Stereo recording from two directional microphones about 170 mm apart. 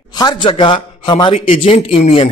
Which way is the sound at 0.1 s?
25° left (ahead or behind).